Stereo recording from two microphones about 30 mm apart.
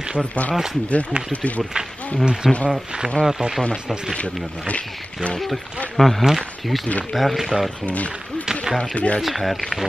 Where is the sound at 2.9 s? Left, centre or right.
Right.